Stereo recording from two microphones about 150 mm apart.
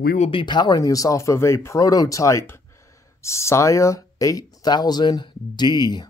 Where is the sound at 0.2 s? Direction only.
35° left (ahead or behind).